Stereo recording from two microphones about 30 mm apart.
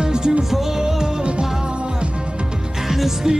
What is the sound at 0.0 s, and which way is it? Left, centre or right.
Music, right.